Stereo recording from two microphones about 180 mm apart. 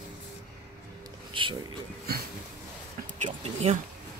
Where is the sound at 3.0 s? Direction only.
40° right (ahead or behind).